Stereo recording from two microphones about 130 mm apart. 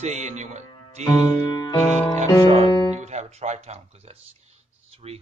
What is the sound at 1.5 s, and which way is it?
Music, 30° left (ahead or behind).